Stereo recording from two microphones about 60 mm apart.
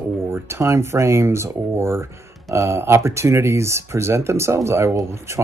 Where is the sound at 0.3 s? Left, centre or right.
Right.